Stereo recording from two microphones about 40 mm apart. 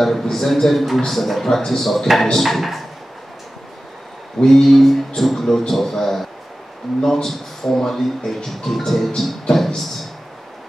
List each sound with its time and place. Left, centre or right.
0.0 s a man's voice: centre
4.4 s a man's voice: centre